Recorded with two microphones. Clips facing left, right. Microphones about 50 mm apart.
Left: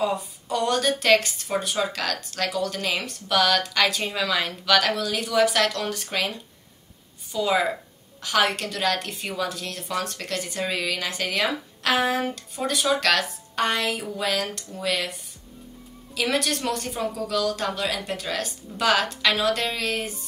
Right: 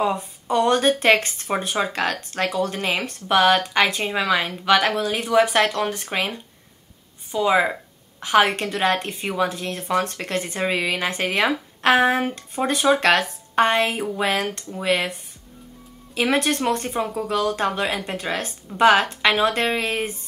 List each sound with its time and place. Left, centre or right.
0.0 s a woman's voice: right
16.2 s a woman's voice: right